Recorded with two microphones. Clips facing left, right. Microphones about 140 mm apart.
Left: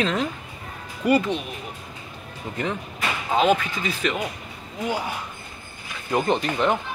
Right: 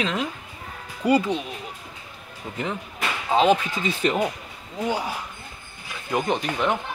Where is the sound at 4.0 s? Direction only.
35° right (ahead or behind).